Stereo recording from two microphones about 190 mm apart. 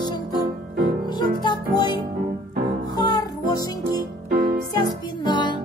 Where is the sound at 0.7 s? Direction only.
50° right (ahead or behind).